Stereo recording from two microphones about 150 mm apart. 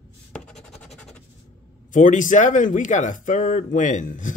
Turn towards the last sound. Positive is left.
turn(degrees=60)  # may be behind; listen again after turning